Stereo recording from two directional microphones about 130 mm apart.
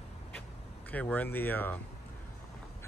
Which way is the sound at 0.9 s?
10° left (ahead or behind).